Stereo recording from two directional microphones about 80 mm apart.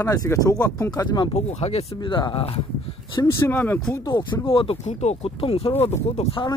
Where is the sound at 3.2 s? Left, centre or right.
Left.